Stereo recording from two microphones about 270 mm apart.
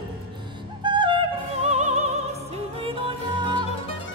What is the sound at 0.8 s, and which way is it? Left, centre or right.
Music, centre.